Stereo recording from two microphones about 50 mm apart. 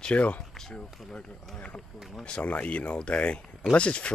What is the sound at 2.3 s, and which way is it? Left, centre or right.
Speech, left.